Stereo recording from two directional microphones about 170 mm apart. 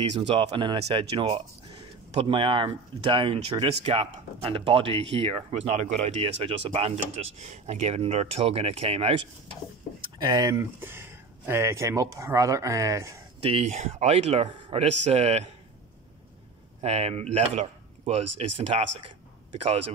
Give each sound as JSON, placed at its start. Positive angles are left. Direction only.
{"t": 0.3, "sound": "speech", "side_deg": -30}
{"t": 10.1, "sound": "speech", "side_deg": -25}
{"t": 13.4, "sound": "speech", "side_deg": -35}
{"t": 16.8, "sound": "speech", "side_deg": -40}